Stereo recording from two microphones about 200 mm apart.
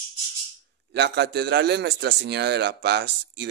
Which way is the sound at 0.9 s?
60° right (ahead or behind).